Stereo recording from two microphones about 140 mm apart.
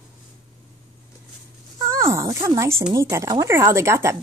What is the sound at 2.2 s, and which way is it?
Speech, 20° right (ahead or behind).